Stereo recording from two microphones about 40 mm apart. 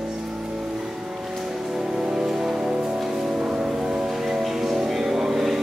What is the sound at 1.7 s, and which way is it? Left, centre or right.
Music, centre.